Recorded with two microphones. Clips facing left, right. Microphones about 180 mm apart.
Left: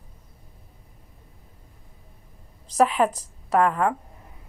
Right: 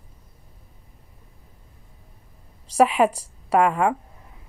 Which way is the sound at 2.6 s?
10° right (ahead or behind).